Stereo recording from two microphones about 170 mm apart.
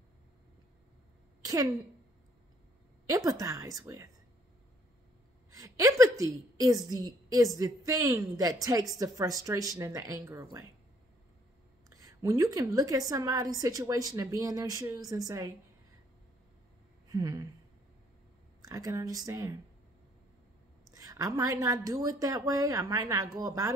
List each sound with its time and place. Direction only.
1.4 s a sound: 20° right (ahead or behind)
3.1 s a woman's voice: 20° right (ahead or behind)
5.5 s a woman's voice: 20° right (ahead or behind)
11.9 s a woman's voice: 20° right (ahead or behind)
17.1 s a woman's voice: 20° right (ahead or behind)
18.6 s a woman's voice: 20° right (ahead or behind)
20.9 s a woman's voice: 20° right (ahead or behind)